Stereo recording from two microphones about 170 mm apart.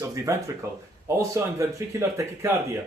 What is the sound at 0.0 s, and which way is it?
A man's voice, 20° right (ahead or behind).